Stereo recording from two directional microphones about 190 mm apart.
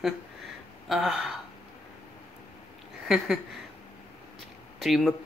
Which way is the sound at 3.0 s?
Centre (ahead or behind).